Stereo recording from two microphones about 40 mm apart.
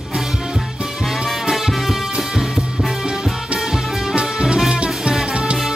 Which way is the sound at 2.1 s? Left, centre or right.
Centre.